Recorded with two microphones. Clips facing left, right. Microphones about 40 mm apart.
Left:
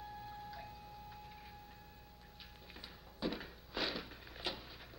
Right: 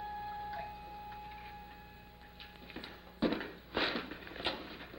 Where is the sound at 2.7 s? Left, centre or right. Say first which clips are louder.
Right 8 dB; right.